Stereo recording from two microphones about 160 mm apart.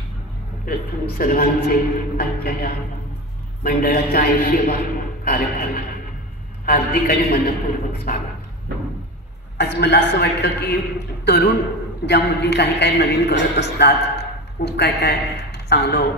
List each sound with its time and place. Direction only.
0.7 s a man's voice: 65° left (ahead or behind)
8.1 s a sound: 60° left (ahead or behind)
9.6 s a man's voice: 90° left